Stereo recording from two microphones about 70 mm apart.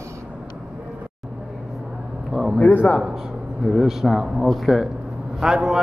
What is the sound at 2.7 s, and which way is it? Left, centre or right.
Speech, left.